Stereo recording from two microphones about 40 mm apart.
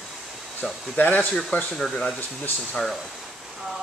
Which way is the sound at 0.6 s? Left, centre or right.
Left.